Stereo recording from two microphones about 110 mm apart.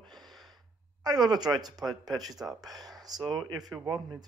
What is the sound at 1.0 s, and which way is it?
Speech, 40° right (ahead or behind).